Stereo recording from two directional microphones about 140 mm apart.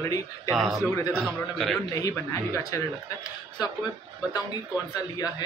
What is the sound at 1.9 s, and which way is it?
Speech, 25° left (ahead or behind).